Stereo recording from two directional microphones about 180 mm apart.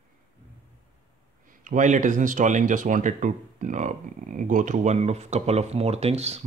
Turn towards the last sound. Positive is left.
turn(degrees=-35)  # may be behind; listen again after turning